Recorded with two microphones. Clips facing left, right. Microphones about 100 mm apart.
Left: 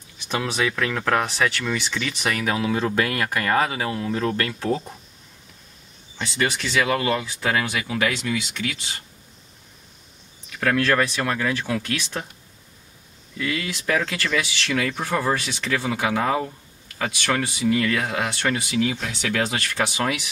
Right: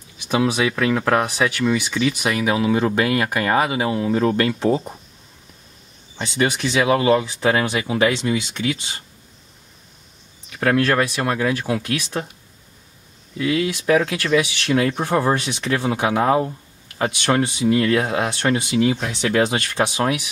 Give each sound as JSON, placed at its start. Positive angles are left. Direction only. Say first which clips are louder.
{"t": 0.2, "sound": "speech", "louder": "right 5 dB", "side_deg": -15}
{"t": 6.1, "sound": "speech", "louder": "right 4 dB", "side_deg": -20}
{"t": 11.0, "sound": "speech", "louder": "right 3 dB", "side_deg": -15}
{"t": 13.4, "sound": "speech", "louder": "right 7 dB", "side_deg": -20}